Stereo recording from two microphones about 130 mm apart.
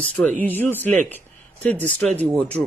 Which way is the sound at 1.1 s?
10° left (ahead or behind).